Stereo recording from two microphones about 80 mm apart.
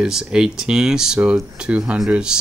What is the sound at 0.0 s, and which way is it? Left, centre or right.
Speech, centre.